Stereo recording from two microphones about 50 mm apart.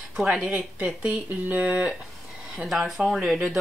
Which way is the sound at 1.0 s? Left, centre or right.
Right.